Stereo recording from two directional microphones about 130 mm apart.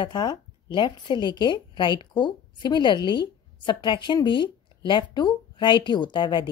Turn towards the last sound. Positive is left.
turn(degrees=35)  # may be behind; listen again after turning